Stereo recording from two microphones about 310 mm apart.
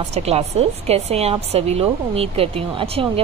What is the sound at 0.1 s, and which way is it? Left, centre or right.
A woman's voice, centre.